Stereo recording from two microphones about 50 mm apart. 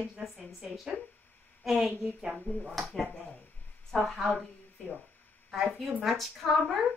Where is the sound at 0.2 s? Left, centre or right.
Centre.